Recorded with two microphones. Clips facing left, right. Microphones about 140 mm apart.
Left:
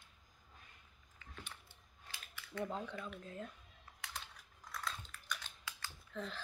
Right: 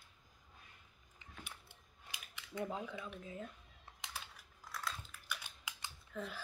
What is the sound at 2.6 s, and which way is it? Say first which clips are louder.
Speech: even; 5° right (ahead or behind).